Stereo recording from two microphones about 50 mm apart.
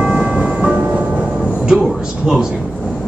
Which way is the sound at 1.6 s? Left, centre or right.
Centre.